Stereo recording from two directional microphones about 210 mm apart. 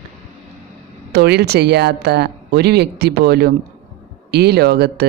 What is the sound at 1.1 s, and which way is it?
Speech, 50° right (ahead or behind).